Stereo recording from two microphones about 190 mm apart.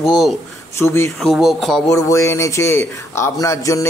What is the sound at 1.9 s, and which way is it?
A man's voice, 15° left (ahead or behind).